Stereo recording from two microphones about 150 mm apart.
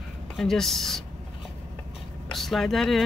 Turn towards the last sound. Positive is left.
turn(degrees=0)  # may be behind; listen again after turning